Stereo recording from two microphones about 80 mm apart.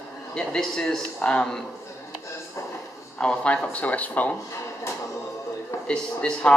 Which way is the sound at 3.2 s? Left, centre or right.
Centre.